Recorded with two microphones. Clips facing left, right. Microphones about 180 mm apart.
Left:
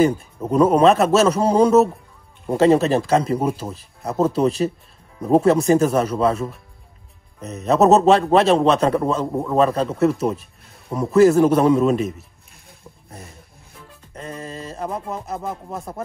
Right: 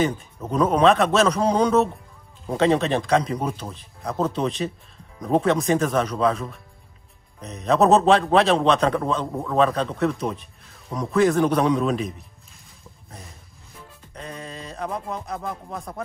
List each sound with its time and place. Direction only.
0.7 s speech: 5° left (ahead or behind)
9.3 s a man's voice: 15° left (ahead or behind)
9.6 s speech: 5° left (ahead or behind)
14.1 s speech: centre (ahead or behind)